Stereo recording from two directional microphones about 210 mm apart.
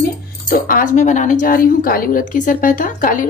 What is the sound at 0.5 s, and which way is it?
Speech, 40° left (ahead or behind).